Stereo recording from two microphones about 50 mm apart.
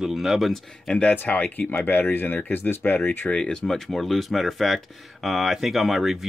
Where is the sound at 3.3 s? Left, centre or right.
Centre.